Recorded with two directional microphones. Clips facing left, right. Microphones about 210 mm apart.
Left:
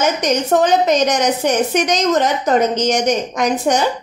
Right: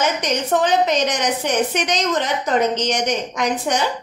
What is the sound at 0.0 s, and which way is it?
A woman's voice, 45° left (ahead or behind).